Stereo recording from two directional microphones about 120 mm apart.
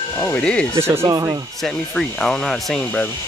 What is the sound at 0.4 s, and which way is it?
Speech, 10° left (ahead or behind).